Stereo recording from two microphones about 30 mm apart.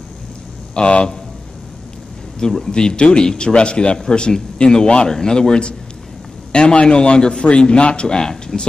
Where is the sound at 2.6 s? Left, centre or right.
Left.